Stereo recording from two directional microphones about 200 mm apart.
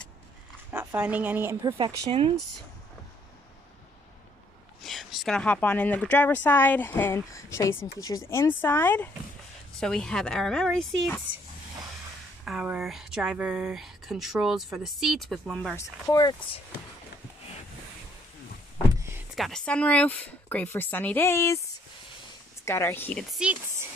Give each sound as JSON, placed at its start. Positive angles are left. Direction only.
{"t": 0.7, "sound": "speech", "side_deg": -10}
{"t": 4.8, "sound": "speech", "side_deg": 0}
{"t": 11.3, "sound": "speech", "side_deg": -75}
{"t": 12.4, "sound": "speech", "side_deg": -5}
{"t": 15.8, "sound": "speech", "side_deg": 15}
{"t": 18.9, "sound": "power windows", "side_deg": -10}
{"t": 19.3, "sound": "speech", "side_deg": 0}
{"t": 22.7, "sound": "speech", "side_deg": 10}
{"t": 23.3, "sound": "speech", "side_deg": -5}